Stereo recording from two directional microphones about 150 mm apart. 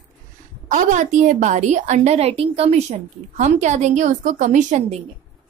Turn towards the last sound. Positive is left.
turn(degrees=-50)  # may be behind; listen again after turning